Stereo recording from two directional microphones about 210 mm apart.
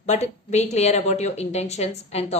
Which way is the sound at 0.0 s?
35° left (ahead or behind).